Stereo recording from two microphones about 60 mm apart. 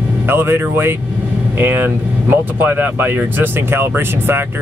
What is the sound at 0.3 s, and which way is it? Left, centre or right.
Speech, right.